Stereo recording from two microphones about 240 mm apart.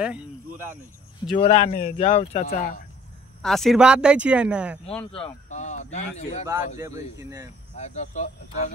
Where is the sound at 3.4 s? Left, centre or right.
Centre.